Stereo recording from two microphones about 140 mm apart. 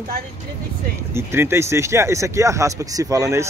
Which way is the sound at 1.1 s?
20° right (ahead or behind).